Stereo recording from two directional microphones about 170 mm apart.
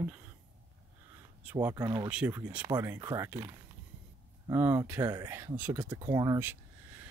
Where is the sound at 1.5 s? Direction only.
20° right (ahead or behind).